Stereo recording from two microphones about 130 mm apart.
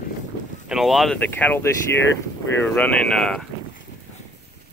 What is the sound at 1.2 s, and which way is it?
Speech, 15° left (ahead or behind).